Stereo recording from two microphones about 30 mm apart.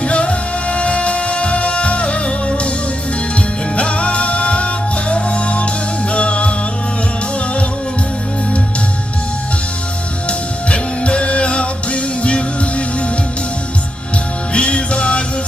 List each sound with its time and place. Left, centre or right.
0.0 s music: left
3.7 s music: left
10.7 s music: left
14.5 s music: left